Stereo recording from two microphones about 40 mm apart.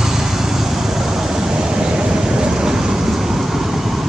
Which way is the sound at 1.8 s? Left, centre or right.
Centre.